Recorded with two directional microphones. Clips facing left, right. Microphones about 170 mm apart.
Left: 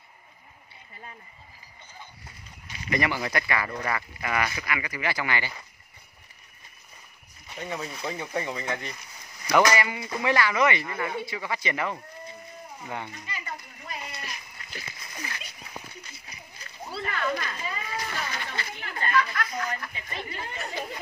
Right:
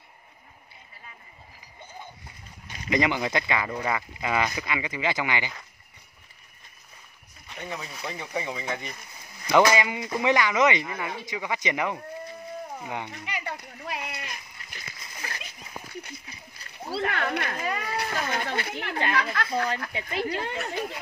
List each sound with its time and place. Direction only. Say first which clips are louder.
2.9 s speech: right 3 dB; 20° right (ahead or behind)
7.4 s speech: left 2 dB; centre (ahead or behind)
9.5 s speech: right 2 dB; 20° right (ahead or behind)
13.1 s a sound: right 4 dB; 75° right (ahead or behind)
17.0 s speech: right 1 dB; 65° right (ahead or behind)